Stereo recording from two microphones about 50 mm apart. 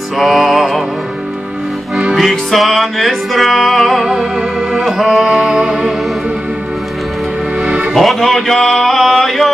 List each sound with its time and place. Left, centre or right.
0.2 s music: centre
2.1 s music: centre
4.0 s music: centre
4.8 s music: centre
5.2 s music: centre
7.6 s music: right
7.9 s music: centre